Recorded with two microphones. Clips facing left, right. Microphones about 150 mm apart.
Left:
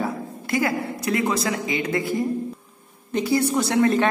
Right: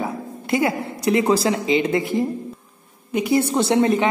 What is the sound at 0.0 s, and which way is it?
Speech, 25° right (ahead or behind).